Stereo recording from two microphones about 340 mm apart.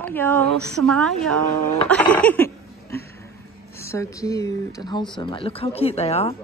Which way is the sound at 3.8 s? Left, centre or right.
Centre.